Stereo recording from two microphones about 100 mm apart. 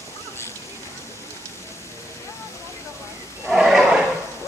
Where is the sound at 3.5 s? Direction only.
5° right (ahead or behind).